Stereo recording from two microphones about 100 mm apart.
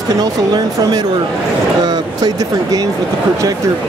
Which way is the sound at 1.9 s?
40° right (ahead or behind).